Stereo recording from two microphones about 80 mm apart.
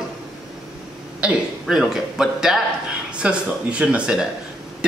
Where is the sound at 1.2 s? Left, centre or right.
Centre.